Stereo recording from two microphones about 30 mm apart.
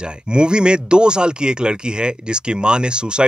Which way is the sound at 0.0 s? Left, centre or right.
Right.